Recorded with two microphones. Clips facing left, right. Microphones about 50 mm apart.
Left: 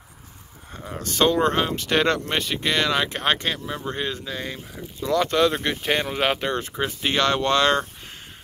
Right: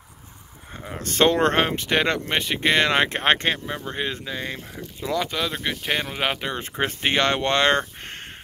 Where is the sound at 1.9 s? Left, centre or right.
Centre.